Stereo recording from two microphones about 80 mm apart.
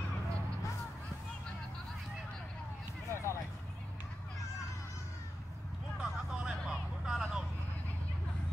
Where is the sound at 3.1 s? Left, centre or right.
Left.